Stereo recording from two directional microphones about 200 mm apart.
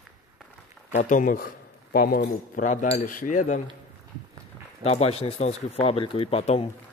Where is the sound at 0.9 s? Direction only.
40° left (ahead or behind).